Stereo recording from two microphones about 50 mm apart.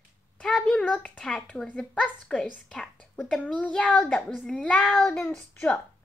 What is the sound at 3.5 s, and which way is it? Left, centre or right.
Speech, left.